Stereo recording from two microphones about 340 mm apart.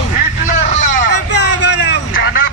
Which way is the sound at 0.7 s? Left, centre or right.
Left.